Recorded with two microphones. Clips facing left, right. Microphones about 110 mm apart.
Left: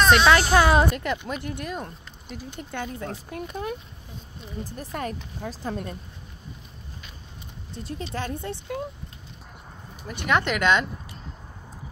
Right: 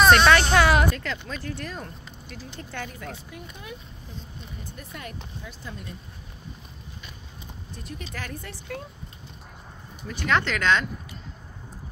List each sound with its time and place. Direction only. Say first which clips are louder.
0.1 s speech: even; 10° left (ahead or behind)
3.3 s speech: left 9 dB; 50° left (ahead or behind)
4.9 s speech: left 9 dB; 45° left (ahead or behind)
7.7 s speech: left 6 dB; 30° left (ahead or behind)
10.0 s speech: left 1 dB; 15° left (ahead or behind)